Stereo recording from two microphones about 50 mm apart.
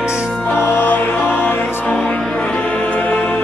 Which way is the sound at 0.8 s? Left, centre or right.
Left.